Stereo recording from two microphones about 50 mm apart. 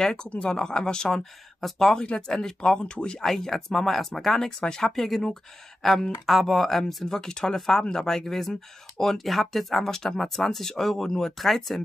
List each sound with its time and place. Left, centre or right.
0.1 s speech: left
3.2 s speech: centre
4.8 s speech: centre